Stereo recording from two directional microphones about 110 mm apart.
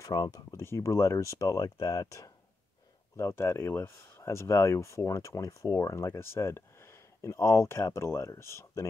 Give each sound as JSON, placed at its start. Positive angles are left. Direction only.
{"t": 0.0, "sound": "speech", "side_deg": 40}
{"t": 0.5, "sound": "speech", "side_deg": 25}